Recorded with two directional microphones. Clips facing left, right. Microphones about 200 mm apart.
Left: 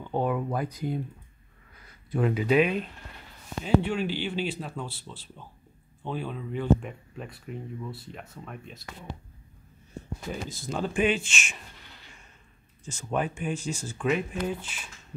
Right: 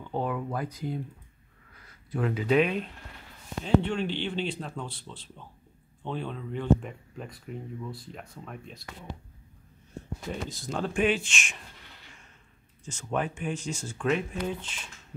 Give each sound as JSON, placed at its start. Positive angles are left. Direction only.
{"t": 0.0, "sound": "speech", "side_deg": 20}
{"t": 2.0, "sound": "speech", "side_deg": 20}
{"t": 10.3, "sound": "speech", "side_deg": 0}
{"t": 12.8, "sound": "speech", "side_deg": 5}